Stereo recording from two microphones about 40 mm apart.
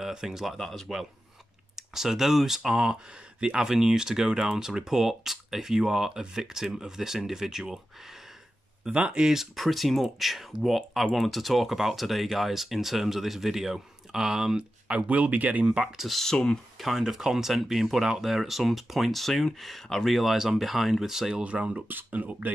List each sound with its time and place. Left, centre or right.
0.0 s speech: centre
0.6 s speech: centre
1.8 s speech: centre
8.9 s speech: right
9.2 s speech: centre
9.6 s speech: centre
14.9 s speech: right
16.1 s speech: centre
21.3 s speech: right
21.8 s speech: right